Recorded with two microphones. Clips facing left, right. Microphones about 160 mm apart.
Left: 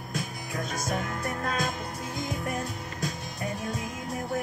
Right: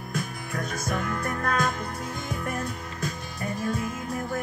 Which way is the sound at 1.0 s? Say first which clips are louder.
Right 3 dB; 60° right (ahead or behind).